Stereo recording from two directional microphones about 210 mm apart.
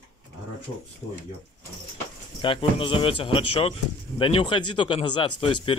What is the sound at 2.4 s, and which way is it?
Speech, 25° left (ahead or behind).